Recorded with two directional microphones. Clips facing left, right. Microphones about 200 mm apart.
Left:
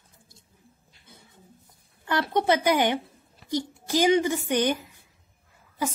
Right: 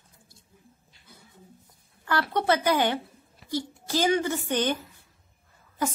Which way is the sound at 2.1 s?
20° left (ahead or behind).